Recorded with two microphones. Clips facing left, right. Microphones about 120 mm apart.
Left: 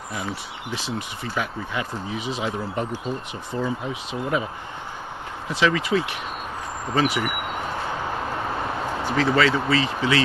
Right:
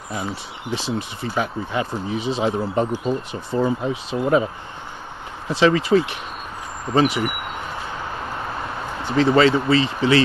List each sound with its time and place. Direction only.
0.1 s speech: 30° right (ahead or behind)
5.5 s speech: 30° right (ahead or behind)
9.0 s speech: 25° right (ahead or behind)